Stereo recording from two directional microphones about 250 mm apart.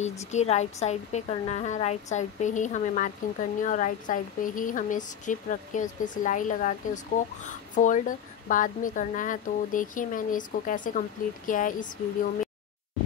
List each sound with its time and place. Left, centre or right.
0.3 s a woman's voice: left